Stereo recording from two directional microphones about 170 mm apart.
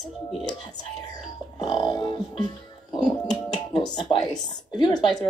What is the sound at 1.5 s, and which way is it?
Music, 25° left (ahead or behind).